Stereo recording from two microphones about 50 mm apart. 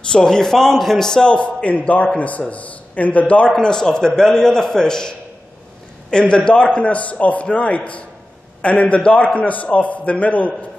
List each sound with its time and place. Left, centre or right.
0.1 s a man's voice: centre
1.2 s a man's voice: left